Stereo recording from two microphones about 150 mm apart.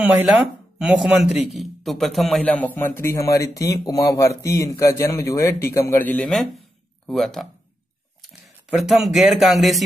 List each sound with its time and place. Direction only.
0.0 s speech: 5° right (ahead or behind); by 6.1 s 15° left (ahead or behind)
7.1 s speech: centre (ahead or behind)